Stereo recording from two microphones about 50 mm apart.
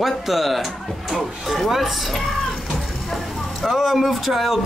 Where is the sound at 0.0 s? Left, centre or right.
Centre.